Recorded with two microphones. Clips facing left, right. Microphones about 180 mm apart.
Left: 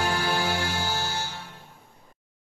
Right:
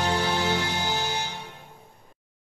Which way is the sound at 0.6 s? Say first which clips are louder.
Right 1 dB; 20° right (ahead or behind).